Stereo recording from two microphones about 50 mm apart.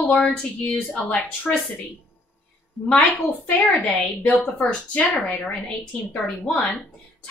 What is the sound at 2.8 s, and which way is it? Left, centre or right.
A woman's voice, left.